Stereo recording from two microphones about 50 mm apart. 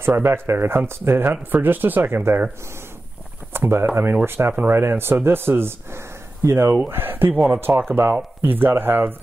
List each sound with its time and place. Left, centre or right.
0.0 s speech: right
1.3 s speech: right
3.5 s speech: right
6.9 s speech: right